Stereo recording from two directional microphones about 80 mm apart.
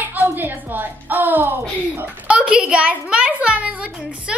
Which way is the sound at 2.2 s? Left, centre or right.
Centre.